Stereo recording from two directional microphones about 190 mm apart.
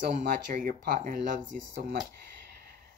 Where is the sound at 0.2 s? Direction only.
50° right (ahead or behind).